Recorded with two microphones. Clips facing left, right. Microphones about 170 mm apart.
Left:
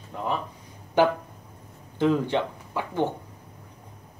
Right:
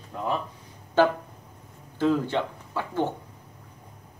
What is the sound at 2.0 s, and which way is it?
Speech, 15° left (ahead or behind).